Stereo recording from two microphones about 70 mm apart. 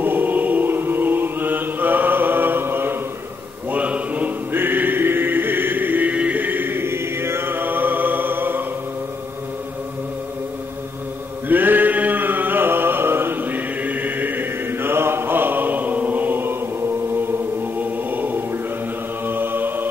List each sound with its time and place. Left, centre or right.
0.0 s chant: right
3.7 s music: right
11.4 s a sound: right
17.7 s choir: right
19.2 s music: right